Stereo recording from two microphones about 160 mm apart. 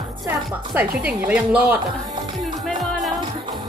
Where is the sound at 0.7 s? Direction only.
10° right (ahead or behind).